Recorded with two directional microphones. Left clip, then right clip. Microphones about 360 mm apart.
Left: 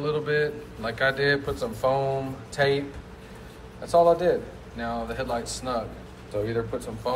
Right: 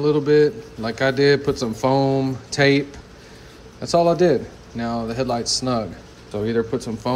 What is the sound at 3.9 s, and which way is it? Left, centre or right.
A man's voice, right.